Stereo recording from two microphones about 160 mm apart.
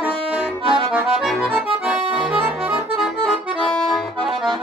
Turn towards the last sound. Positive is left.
turn(degrees=5)  # may be behind; listen again after turning